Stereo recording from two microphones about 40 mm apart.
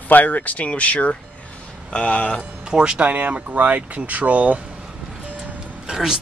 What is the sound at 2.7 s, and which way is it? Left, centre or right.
Speech, right.